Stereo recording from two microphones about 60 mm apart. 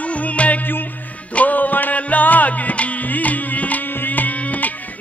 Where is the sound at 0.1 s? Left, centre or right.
Left.